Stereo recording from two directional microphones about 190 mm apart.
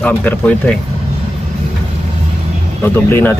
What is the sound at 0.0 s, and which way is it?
Speech, 10° left (ahead or behind).